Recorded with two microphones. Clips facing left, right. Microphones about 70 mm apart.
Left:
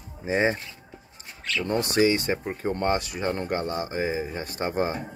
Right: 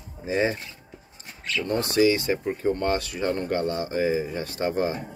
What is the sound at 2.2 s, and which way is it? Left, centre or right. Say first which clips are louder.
Speech: right 3 dB; left.